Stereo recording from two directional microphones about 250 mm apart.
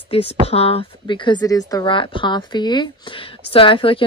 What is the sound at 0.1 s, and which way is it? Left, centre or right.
Speech, left.